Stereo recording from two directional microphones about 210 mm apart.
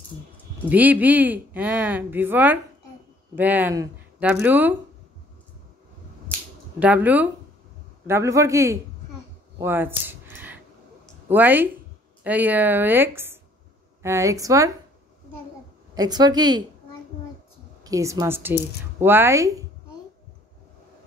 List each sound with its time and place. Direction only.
0.7 s speech: 10° right (ahead or behind)
6.8 s speech: 5° right (ahead or behind)
9.6 s a sound: 10° right (ahead or behind)
11.2 s speech: 10° right (ahead or behind)
15.9 s a woman's voice: 20° right (ahead or behind)
17.8 s speech: 15° right (ahead or behind)